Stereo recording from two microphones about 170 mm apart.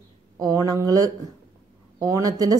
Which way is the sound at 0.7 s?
20° right (ahead or behind).